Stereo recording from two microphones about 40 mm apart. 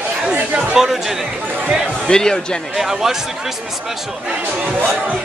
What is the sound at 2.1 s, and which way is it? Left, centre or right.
Speech, centre.